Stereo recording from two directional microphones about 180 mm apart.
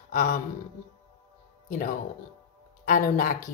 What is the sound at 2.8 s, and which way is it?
Speech, 45° left (ahead or behind).